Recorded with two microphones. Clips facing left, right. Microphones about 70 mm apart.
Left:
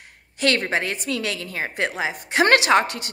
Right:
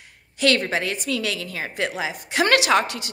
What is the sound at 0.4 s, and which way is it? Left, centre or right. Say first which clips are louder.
A woman's voice: right 1 dB; left.